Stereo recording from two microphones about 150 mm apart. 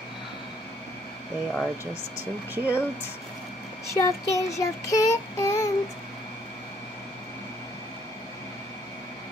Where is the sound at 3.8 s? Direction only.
20° left (ahead or behind).